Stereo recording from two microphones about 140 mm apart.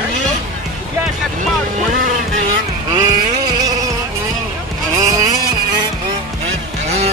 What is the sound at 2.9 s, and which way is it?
Vehicle, 30° right (ahead or behind).